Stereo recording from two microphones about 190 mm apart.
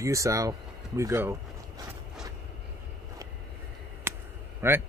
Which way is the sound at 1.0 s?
15° right (ahead or behind).